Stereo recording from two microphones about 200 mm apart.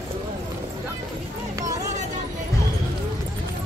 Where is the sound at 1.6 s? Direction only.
15° right (ahead or behind).